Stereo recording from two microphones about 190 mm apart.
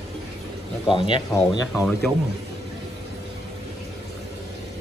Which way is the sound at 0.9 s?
20° left (ahead or behind).